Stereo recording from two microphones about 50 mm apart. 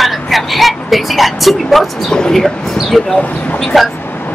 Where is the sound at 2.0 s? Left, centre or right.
Centre.